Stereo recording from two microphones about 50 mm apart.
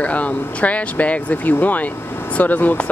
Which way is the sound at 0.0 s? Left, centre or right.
Left.